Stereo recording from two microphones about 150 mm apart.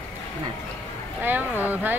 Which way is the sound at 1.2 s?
10° right (ahead or behind).